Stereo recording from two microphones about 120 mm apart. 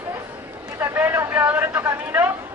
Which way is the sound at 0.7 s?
20° right (ahead or behind).